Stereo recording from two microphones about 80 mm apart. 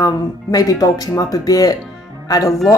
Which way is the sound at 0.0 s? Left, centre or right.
Left.